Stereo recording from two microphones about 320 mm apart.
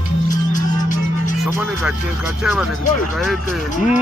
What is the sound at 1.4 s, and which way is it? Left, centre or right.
Speech, centre.